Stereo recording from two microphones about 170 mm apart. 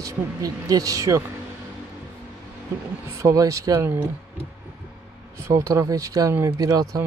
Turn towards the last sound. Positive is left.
turn(degrees=-20)  # may be behind; listen again after turning